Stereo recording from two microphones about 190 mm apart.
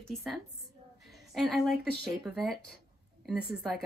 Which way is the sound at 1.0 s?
Centre (ahead or behind).